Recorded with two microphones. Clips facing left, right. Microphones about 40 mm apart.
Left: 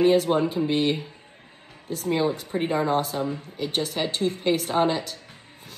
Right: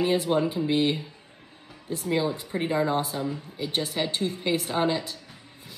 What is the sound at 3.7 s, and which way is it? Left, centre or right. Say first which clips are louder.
Speech: left 1 dB; right.